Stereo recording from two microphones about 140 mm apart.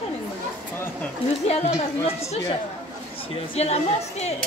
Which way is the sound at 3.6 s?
50° left (ahead or behind).